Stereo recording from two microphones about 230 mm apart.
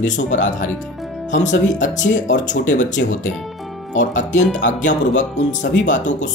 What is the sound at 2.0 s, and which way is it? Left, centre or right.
Speech, left.